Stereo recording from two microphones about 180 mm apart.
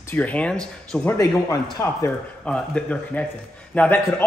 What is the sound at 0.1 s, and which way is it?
Speech, 10° left (ahead or behind).